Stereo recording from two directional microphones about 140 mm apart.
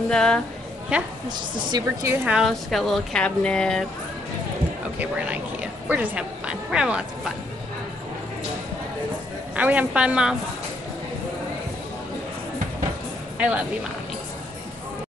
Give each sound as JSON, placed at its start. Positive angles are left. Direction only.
{"t": 0.1, "sound": "speech", "side_deg": 5}
{"t": 0.9, "sound": "a woman's voice", "side_deg": -10}
{"t": 1.7, "sound": "speech", "side_deg": -30}
{"t": 2.0, "sound": "a woman's voice", "side_deg": -10}
{"t": 2.4, "sound": "speech", "side_deg": 0}
{"t": 4.9, "sound": "a woman's voice", "side_deg": -10}
{"t": 9.6, "sound": "a woman's voice", "side_deg": -10}
{"t": 13.4, "sound": "speech", "side_deg": -10}